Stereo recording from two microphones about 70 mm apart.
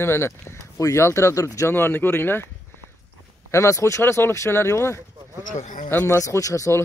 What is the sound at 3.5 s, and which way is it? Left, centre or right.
Speech, left.